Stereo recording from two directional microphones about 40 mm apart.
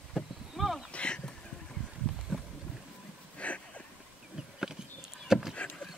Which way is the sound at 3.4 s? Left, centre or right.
Left.